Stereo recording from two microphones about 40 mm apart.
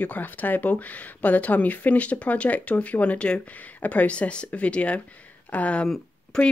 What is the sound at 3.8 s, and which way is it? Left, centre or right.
Speech, left.